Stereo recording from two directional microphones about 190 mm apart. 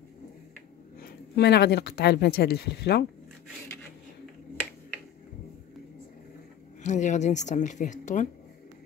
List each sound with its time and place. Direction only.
1.0 s speech: 60° left (ahead or behind)
6.8 s speech: 40° left (ahead or behind)